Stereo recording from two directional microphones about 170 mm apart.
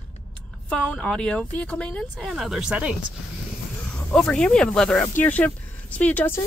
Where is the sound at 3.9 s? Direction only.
5° left (ahead or behind).